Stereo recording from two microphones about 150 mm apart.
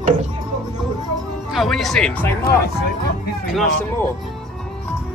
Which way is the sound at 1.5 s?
Centre (ahead or behind).